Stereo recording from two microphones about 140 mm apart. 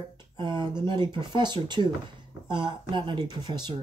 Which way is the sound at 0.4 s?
30° right (ahead or behind).